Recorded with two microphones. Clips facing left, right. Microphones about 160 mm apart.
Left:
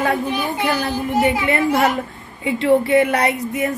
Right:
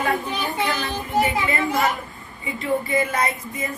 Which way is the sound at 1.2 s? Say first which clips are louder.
Left 6 dB; 70° left (ahead or behind).